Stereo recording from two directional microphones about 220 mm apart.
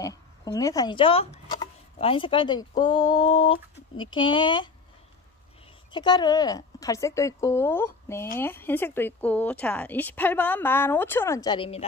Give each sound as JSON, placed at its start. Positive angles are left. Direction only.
{"t": 0.0, "sound": "speech", "side_deg": 15}
{"t": 5.9, "sound": "speech", "side_deg": 20}